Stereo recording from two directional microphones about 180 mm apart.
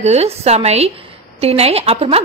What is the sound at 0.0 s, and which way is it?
A woman's voice, 35° right (ahead or behind).